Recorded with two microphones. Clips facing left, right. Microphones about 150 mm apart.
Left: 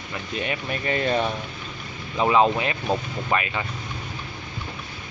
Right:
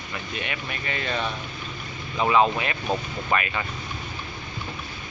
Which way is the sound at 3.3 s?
20° left (ahead or behind).